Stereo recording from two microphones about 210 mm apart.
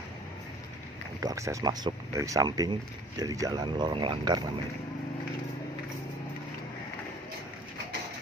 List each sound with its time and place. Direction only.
1.2 s speech: 15° right (ahead or behind)